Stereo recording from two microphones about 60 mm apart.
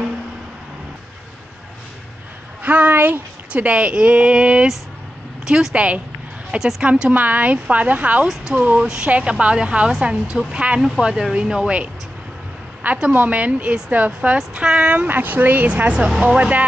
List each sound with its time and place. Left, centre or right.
2.6 s a woman's voice: right; by 5.9 s centre
6.8 s a woman's voice: right
12.8 s a woman's voice: right
15.0 s a woman's voice: right